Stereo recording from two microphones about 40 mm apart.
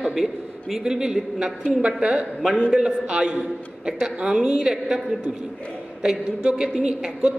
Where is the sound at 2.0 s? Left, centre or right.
Right.